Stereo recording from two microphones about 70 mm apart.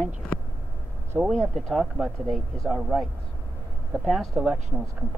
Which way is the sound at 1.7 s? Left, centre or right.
Centre.